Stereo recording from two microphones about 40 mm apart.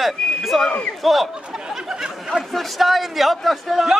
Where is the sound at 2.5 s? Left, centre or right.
Centre.